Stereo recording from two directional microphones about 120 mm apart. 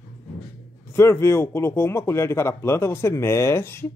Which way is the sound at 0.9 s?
20° left (ahead or behind).